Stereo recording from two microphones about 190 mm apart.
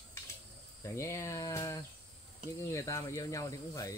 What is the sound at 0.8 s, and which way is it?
Speech, 15° left (ahead or behind).